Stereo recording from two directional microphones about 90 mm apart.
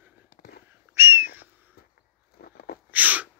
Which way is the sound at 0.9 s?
30° right (ahead or behind).